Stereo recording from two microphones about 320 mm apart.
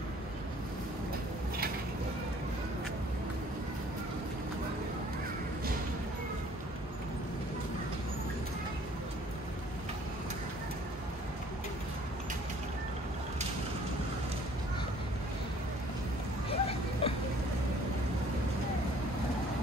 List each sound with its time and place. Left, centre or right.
16.4 s vehicle: centre